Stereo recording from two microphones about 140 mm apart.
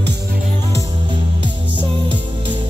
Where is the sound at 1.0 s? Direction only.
35° right (ahead or behind).